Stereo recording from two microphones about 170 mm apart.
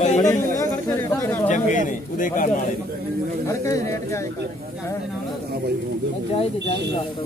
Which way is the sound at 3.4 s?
20° left (ahead or behind).